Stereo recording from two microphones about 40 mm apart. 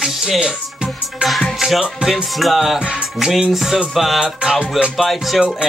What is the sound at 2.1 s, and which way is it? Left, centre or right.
Music, centre.